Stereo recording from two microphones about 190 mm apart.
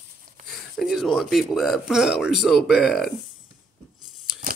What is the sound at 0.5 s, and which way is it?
Speech, centre (ahead or behind).